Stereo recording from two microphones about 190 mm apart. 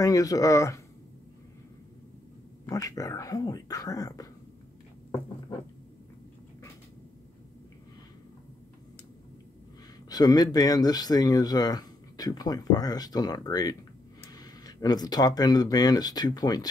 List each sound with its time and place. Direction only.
0.0 s speech: 20° left (ahead or behind)
2.6 s speech: 15° left (ahead or behind)
10.0 s speech: 20° left (ahead or behind)